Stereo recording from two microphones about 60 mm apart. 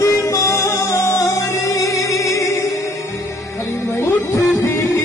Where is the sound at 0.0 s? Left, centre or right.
Left.